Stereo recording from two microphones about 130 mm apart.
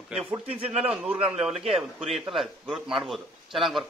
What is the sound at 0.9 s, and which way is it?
Speech, 5° right (ahead or behind).